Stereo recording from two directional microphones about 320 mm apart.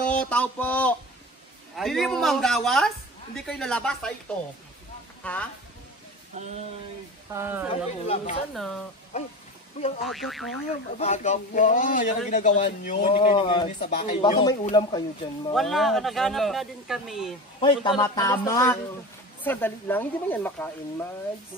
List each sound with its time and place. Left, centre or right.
0.1 s a sound: centre
1.8 s speech: centre
5.2 s speech: centre
6.3 s a sound: right
7.3 s speech: centre
7.7 s a man's voice: centre
8.5 s speech: centre
9.1 s a man's voice: centre
10.0 s speech: centre
11.0 s a man's voice: left
15.5 s speech: centre
17.6 s a man's voice: centre